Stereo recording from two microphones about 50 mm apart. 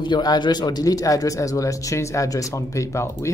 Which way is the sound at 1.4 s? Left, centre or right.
Left.